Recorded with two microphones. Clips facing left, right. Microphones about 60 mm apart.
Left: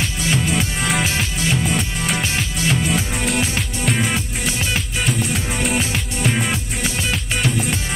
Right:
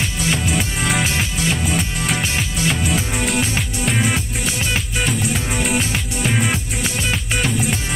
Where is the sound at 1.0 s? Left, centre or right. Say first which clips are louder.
Right 1 dB; centre.